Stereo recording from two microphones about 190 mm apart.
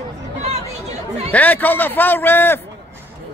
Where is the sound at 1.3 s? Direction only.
10° left (ahead or behind).